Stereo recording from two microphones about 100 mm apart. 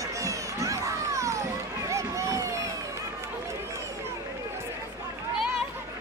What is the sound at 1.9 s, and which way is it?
Run, 30° right (ahead or behind).